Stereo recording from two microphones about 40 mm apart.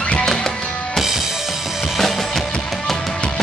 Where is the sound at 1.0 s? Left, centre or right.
Centre.